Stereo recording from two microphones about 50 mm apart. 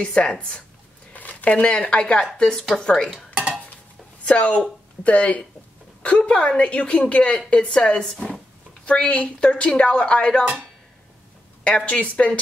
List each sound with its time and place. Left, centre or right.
0.0 s a woman's voice: centre
1.1 s a sound: left
1.8 s a woman's voice: left
4.2 s a woman's voice: left
11.6 s a woman's voice: left